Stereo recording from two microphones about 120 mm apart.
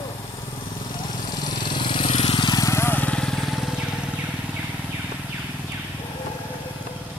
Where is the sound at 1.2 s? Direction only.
35° left (ahead or behind); by 3.8 s centre (ahead or behind).